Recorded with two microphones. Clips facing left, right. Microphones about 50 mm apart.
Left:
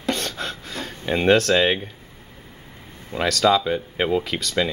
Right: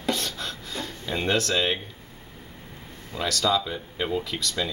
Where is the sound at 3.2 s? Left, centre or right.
Left.